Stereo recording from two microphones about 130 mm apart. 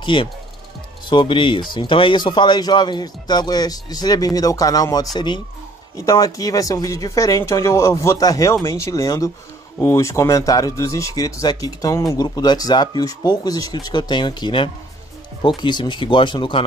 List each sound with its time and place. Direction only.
0.0 s speech: 40° left (ahead or behind)